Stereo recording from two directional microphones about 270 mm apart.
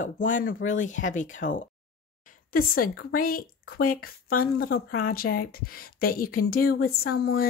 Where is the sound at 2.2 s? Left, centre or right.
Left.